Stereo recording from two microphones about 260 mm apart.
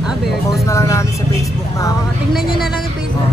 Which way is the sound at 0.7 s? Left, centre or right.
Centre.